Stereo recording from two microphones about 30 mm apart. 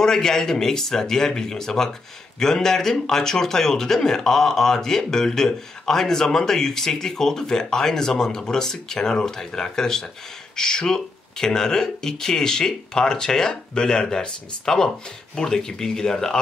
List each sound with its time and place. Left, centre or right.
0.0 s speech: centre